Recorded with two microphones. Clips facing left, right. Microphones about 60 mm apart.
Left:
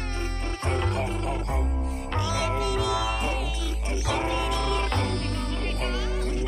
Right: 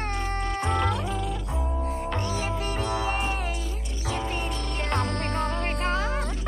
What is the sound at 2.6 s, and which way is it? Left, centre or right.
Music, right.